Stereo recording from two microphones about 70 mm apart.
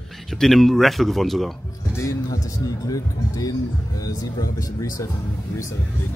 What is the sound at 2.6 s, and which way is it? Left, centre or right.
Speech, left.